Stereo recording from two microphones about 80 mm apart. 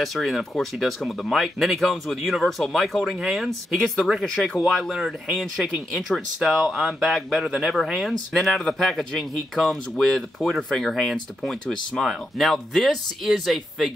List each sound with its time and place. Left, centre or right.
0.0 s speech: centre